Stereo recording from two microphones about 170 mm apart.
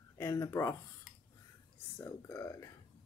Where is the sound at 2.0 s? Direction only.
15° left (ahead or behind).